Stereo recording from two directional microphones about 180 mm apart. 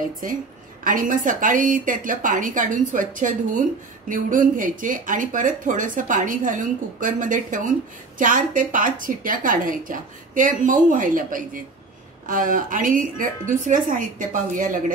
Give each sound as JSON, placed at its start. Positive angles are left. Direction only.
{"t": 0.0, "sound": "speech", "side_deg": -50}